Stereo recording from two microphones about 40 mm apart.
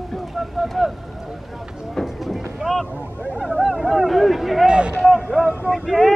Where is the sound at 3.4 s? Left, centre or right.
Centre.